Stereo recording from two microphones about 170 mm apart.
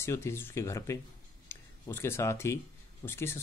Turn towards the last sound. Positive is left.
turn(degrees=15)  # may be behind; listen again after turning